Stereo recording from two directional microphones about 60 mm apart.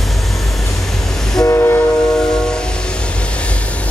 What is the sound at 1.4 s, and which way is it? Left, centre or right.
Train, left.